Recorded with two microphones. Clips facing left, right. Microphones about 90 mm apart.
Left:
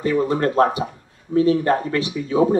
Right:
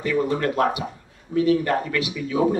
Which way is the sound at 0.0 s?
30° left (ahead or behind).